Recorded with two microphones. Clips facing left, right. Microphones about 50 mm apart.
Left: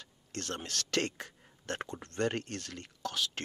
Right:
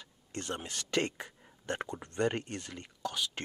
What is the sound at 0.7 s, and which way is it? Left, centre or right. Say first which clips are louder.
Speech: right 1 dB; centre.